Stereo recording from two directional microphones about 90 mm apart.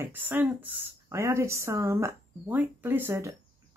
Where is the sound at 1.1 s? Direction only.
30° right (ahead or behind).